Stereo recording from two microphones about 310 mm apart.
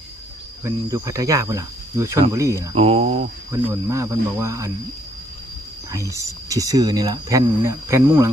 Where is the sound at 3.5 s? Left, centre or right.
Centre.